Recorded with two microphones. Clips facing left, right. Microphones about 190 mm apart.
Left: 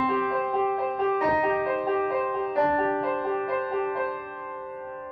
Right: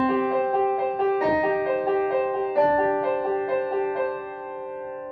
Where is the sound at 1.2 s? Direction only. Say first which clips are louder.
Right 2 dB; centre (ahead or behind).